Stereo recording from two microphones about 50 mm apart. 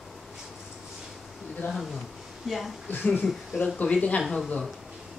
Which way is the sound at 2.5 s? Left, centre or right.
Centre.